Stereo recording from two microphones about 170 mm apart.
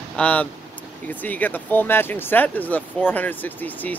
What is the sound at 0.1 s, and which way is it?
Speech, 10° left (ahead or behind).